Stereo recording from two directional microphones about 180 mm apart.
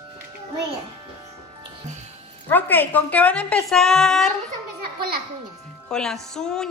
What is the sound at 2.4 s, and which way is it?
A woman's voice, 10° left (ahead or behind).